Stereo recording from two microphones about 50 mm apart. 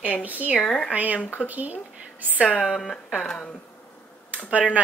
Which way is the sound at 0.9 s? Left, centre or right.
Right.